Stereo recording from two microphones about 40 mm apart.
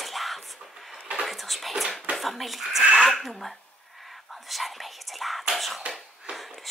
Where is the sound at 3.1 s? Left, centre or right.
Centre.